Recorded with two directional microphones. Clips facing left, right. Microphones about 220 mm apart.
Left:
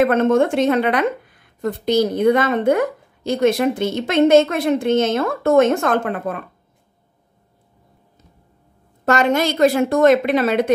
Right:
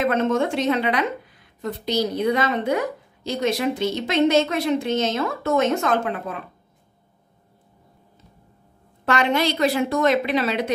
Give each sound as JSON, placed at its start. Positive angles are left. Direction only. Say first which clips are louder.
{"t": 0.0, "sound": "speech", "louder": "left 6 dB", "side_deg": 55}
{"t": 9.0, "sound": "speech", "louder": "left 4 dB", "side_deg": 45}